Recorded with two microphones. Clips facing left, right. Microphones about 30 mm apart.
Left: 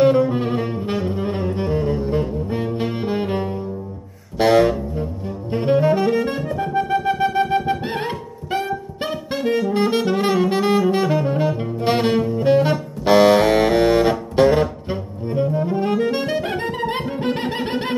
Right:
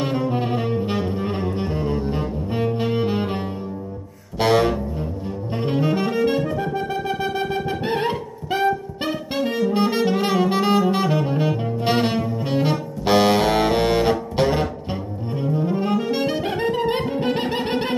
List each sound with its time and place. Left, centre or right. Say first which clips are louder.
0.0 s saxophone: left 7 dB; centre
3.2 s music: left 2 dB; centre
5.5 s saxophone: left 5 dB; centre
6.3 s music: right 2 dB; centre
6.9 s wind instrument: left 5 dB; centre
8.1 s music: even; centre
9.9 s saxophone: left 1 dB; centre
11.6 s saxophone: left 1 dB; centre
12.2 s saxophone: left 6 dB; centre